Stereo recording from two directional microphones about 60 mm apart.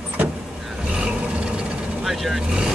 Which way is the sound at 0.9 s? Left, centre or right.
Centre.